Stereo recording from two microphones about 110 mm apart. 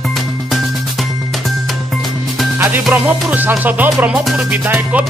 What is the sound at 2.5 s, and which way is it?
Music, 15° right (ahead or behind).